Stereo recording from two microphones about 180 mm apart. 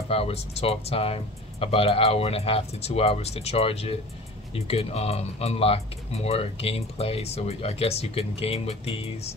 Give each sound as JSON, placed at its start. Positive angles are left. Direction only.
{"t": 0.1, "sound": "speech", "side_deg": 35}